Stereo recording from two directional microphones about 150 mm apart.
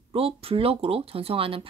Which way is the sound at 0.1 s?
40° right (ahead or behind).